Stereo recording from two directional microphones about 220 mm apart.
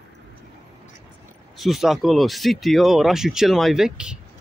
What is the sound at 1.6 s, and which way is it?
Speech, centre (ahead or behind).